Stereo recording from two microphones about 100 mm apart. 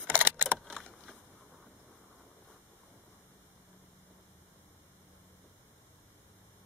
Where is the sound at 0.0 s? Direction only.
20° right (ahead or behind).